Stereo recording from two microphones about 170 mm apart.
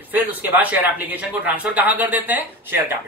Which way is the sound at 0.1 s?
10° right (ahead or behind).